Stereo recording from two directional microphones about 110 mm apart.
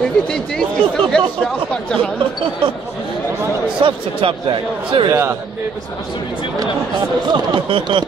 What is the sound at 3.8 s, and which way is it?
Speech, 55° right (ahead or behind).